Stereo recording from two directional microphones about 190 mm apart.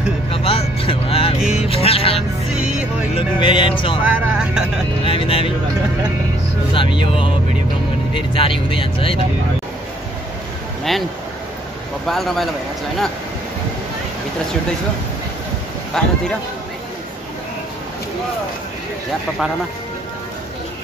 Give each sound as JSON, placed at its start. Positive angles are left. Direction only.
{"t": 0.3, "sound": "vehicle", "side_deg": 30}
{"t": 1.4, "sound": "music", "side_deg": -5}
{"t": 1.7, "sound": "music", "side_deg": 30}
{"t": 2.5, "sound": "music", "side_deg": -5}
{"t": 3.2, "sound": "speech", "side_deg": 25}
{"t": 4.0, "sound": "vehicle", "side_deg": -5}
{"t": 5.0, "sound": "speech", "side_deg": 30}
{"t": 6.7, "sound": "speech", "side_deg": 25}
{"t": 10.8, "sound": "speech", "side_deg": 0}
{"t": 12.1, "sound": "a man's voice", "side_deg": 0}
{"t": 16.0, "sound": "a man's voice", "side_deg": 0}